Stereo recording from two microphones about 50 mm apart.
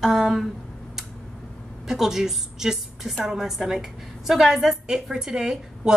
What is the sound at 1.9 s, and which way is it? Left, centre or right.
A woman's voice, centre.